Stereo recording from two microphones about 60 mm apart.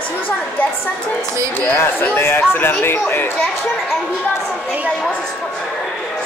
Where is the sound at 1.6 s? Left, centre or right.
Left.